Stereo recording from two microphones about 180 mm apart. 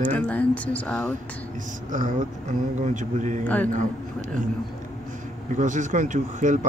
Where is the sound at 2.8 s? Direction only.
45° right (ahead or behind).